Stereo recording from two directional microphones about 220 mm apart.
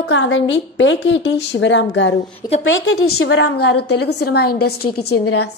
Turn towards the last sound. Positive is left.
turn(degrees=90)